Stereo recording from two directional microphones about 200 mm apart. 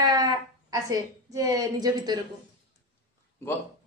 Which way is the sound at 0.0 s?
20° right (ahead or behind).